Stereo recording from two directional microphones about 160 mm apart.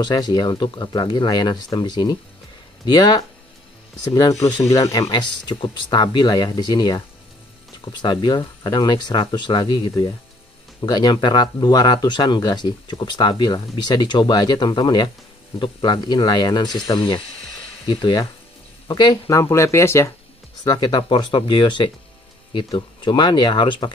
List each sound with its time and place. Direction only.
0.0 s speech: 25° left (ahead or behind)
8.0 s speech: 25° left (ahead or behind)